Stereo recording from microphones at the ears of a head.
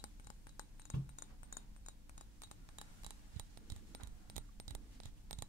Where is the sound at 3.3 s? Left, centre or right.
Right.